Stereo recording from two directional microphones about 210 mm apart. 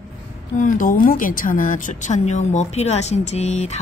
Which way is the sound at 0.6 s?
40° left (ahead or behind).